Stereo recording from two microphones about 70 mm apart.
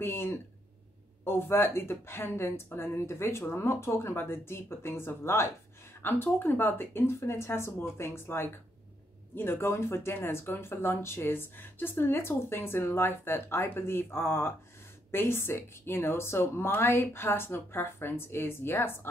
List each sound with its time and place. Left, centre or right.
0.0 s speech: left